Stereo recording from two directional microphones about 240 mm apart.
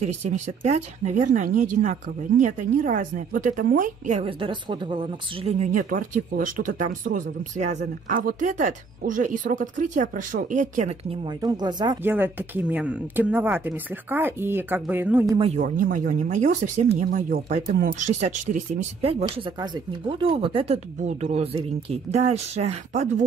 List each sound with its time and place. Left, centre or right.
0.2 s speech: right; by 15.3 s centre
15.3 s speech: right